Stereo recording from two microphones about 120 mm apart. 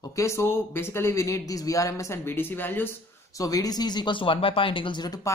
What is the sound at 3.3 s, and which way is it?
Speech, 30° left (ahead or behind).